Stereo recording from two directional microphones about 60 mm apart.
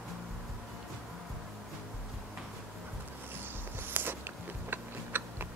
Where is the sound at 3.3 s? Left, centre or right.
Right.